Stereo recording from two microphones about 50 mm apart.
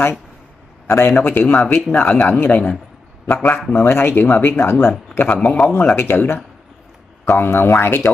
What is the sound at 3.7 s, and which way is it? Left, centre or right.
Speech, left.